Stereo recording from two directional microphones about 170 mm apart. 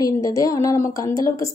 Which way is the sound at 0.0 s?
20° left (ahead or behind).